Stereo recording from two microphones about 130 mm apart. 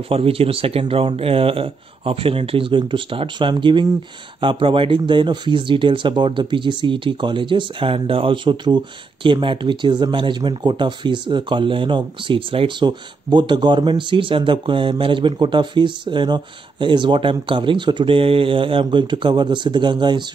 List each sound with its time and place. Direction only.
0.1 s speech: 45° right (ahead or behind)